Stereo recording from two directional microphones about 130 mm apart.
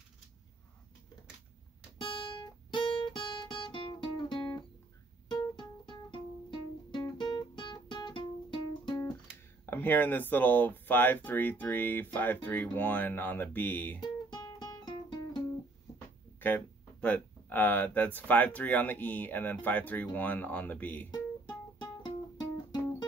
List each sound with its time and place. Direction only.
2.0 s guitar: 40° left (ahead or behind)
5.6 s music: 35° left (ahead or behind)
6.9 s guitar: 35° left (ahead or behind)
9.7 s speech: 15° left (ahead or behind)
13.9 s guitar: 35° left (ahead or behind)
16.3 s speech: 15° left (ahead or behind)
21.1 s music: 35° left (ahead or behind)